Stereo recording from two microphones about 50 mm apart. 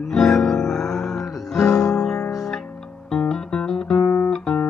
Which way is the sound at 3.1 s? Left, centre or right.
Centre.